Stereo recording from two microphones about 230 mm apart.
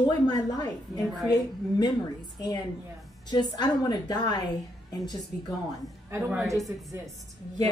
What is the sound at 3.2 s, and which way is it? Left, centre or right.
A woman's voice, centre.